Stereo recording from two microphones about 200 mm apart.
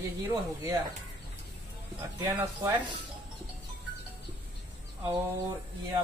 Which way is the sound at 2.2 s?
20° right (ahead or behind).